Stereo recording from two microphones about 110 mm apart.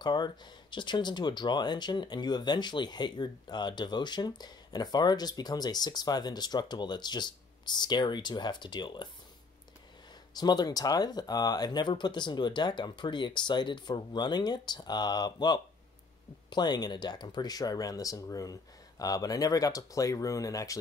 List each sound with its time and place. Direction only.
0.0 s speech: 40° left (ahead or behind)
10.3 s speech: 40° left (ahead or behind)